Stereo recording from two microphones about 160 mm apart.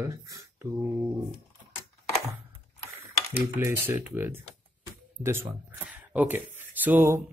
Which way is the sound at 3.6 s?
10° right (ahead or behind).